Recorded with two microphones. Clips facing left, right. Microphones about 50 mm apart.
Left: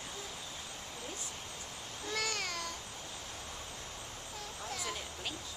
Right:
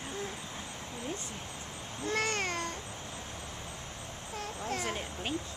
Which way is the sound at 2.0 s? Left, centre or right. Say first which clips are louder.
Right 6 dB; right.